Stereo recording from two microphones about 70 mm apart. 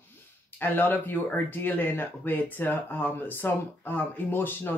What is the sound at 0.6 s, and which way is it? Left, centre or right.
Speech, left.